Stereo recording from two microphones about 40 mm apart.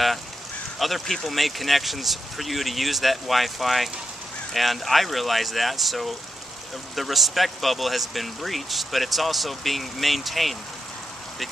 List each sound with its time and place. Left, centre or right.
0.7 s speech: centre